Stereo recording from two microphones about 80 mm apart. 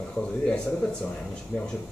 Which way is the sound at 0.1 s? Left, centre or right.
Centre.